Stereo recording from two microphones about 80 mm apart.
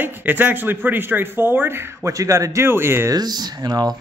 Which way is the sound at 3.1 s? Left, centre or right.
Right.